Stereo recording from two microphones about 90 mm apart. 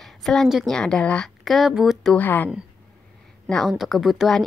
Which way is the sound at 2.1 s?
20° left (ahead or behind).